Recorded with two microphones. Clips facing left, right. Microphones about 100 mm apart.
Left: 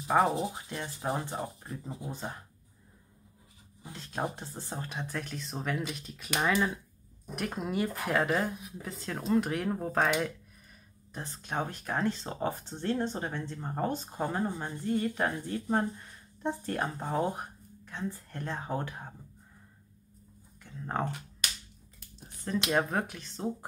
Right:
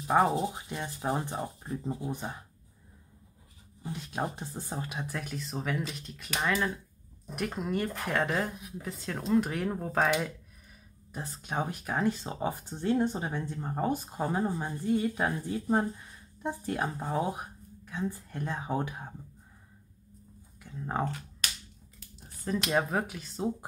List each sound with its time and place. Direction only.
0.1 s speech: 10° right (ahead or behind)
4.4 s speech: 15° right (ahead or behind)
20.6 s speech: 5° right (ahead or behind)
22.7 s speech: centre (ahead or behind)